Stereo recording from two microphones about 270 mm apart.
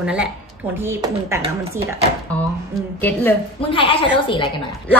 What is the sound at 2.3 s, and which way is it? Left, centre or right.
Speech, centre.